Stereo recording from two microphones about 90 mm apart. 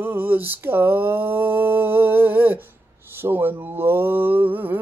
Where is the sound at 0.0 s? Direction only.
20° right (ahead or behind).